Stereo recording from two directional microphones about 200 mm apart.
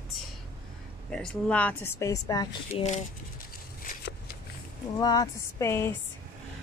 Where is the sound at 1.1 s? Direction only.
5° left (ahead or behind).